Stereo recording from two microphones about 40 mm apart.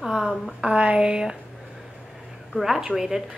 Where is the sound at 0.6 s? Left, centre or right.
Right.